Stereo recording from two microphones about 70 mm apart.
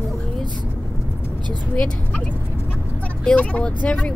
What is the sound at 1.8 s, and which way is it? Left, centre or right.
Speech, centre.